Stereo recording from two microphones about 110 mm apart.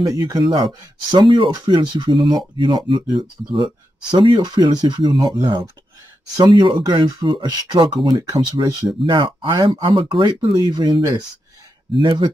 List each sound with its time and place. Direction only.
0.0 s speech: 35° right (ahead or behind)